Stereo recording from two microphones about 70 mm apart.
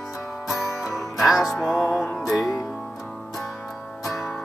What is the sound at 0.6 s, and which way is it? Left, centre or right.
Music, left.